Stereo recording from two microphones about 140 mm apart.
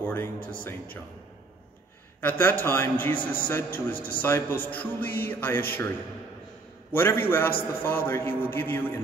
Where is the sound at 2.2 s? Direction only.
15° left (ahead or behind).